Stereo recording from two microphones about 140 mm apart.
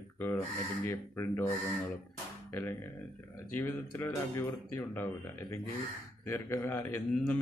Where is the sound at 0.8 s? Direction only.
15° left (ahead or behind).